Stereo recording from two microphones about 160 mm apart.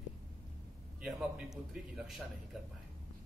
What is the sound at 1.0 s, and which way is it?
A man's voice, 5° right (ahead or behind).